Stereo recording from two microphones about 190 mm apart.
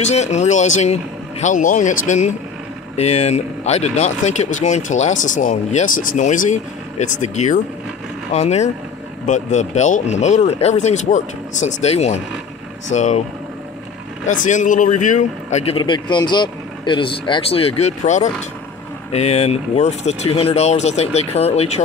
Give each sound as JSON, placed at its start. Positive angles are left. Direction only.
{"t": 0.0, "sound": "speech", "side_deg": 35}
{"t": 14.2, "sound": "speech", "side_deg": 40}